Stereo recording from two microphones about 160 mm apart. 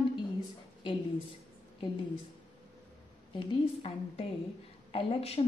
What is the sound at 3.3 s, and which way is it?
A woman's voice, 35° left (ahead or behind).